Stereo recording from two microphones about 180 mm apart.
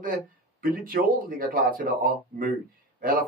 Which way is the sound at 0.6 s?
50° right (ahead or behind).